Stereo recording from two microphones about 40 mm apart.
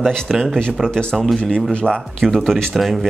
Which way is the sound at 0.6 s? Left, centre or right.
Centre.